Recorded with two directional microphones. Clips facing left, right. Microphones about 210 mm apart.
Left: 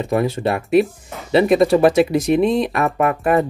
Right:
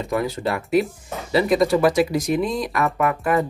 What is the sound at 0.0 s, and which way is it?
Speech, 25° left (ahead or behind).